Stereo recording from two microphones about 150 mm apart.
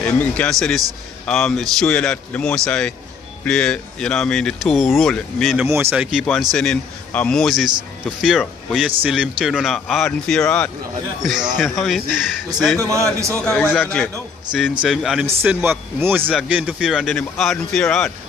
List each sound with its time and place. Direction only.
0.0 s a man's voice: 10° left (ahead or behind)
5.7 s a man's voice: 15° right (ahead or behind)
6.5 s speech: 5° left (ahead or behind)
12.9 s a man's voice: 20° right (ahead or behind)
13.3 s a man's voice: 5° left (ahead or behind)
14.8 s speech: 5° right (ahead or behind)
15.2 s a man's voice: 15° right (ahead or behind); by 18.1 s 5° left (ahead or behind)